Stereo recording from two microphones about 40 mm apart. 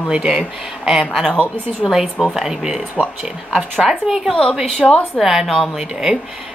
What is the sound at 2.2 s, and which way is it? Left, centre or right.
A woman's voice, centre.